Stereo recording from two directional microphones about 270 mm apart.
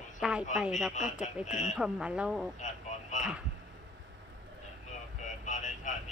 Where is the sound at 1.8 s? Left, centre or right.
Centre.